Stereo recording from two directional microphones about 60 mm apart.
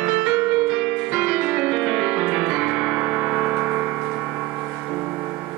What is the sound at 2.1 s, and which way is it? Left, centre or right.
Piano, centre.